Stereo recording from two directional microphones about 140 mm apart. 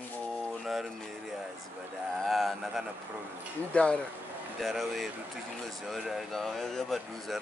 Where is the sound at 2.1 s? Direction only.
Centre (ahead or behind).